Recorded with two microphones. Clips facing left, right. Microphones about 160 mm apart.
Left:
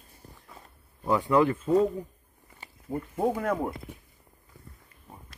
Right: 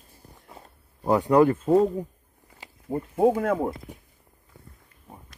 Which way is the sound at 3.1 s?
50° right (ahead or behind).